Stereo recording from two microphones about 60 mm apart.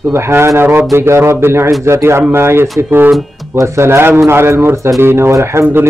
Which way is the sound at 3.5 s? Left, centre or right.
Right.